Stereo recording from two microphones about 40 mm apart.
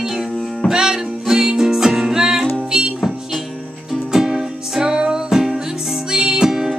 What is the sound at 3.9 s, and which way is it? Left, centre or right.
Music, centre.